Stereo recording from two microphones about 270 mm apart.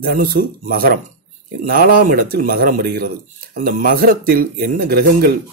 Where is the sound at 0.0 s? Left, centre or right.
Right.